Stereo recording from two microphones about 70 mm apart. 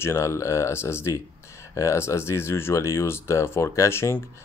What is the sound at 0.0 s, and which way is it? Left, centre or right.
Speech, left.